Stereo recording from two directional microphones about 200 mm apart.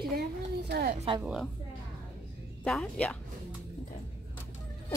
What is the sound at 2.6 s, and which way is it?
Speech, 5° left (ahead or behind).